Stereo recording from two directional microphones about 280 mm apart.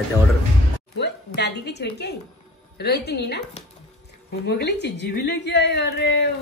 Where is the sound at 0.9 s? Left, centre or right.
Left.